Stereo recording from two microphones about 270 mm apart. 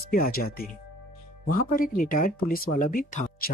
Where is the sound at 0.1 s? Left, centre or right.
Left.